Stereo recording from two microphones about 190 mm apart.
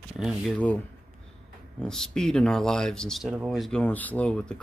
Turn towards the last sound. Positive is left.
turn(degrees=5)  # may be behind; listen again after turning